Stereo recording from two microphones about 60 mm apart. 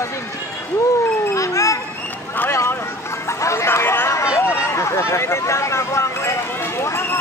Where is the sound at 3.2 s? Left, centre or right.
Left.